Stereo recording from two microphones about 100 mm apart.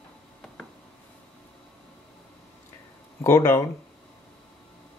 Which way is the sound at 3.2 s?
25° left (ahead or behind).